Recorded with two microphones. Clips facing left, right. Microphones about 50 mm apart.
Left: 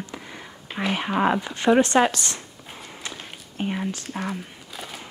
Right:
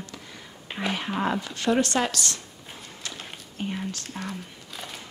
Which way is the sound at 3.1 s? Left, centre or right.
Centre.